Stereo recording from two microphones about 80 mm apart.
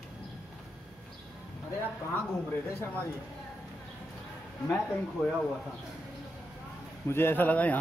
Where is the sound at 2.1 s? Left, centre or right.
Left.